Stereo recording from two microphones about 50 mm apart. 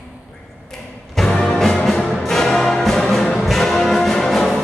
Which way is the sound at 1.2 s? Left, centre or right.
Centre.